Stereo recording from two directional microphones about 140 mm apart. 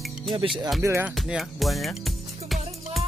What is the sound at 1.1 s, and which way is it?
Music, centre (ahead or behind).